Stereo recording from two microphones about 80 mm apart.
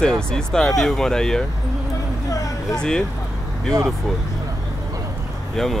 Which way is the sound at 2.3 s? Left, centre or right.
Left.